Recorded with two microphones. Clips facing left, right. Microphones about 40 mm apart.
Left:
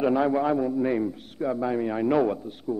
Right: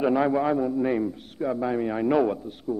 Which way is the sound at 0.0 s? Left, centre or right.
Centre.